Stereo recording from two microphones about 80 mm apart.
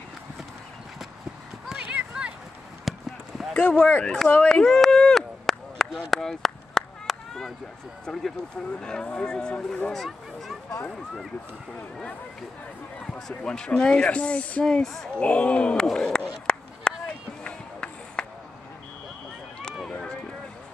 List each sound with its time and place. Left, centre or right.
1.7 s clip-clop: centre
2.9 s a sound: centre
3.5 s speech: centre
4.1 s chop: centre
8.0 s speech: centre
10.0 s a sound: centre
13.1 s speech: centre
15.1 s speech: centre
16.5 s a sound: centre
17.0 s run: centre
19.9 s vehicle: centre